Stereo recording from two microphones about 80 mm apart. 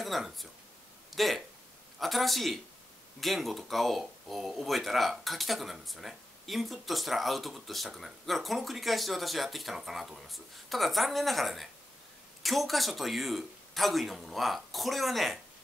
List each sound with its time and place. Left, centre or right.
0.0 s speech: centre